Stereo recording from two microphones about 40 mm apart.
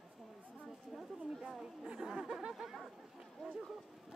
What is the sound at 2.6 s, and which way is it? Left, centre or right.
Speech, centre.